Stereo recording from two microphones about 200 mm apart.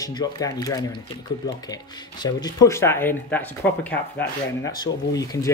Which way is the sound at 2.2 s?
20° left (ahead or behind).